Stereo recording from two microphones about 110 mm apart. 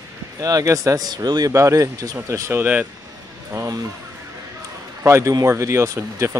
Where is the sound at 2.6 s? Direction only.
15° right (ahead or behind).